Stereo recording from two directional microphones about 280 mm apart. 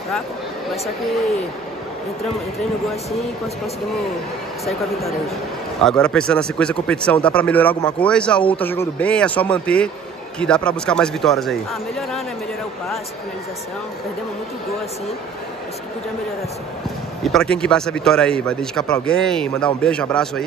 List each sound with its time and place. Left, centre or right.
2.9 s speech: centre
4.6 s speech: centre
17.2 s speech: centre